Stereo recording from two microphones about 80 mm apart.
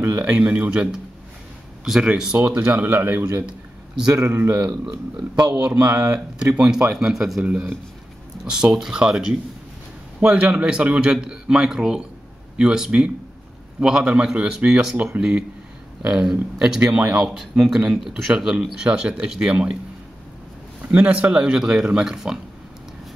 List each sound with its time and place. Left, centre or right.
0.2 s speech: centre
2.3 s speech: right
4.1 s speech: right
5.8 s speech: right
6.6 s a man's voice: centre
20.9 s speech: centre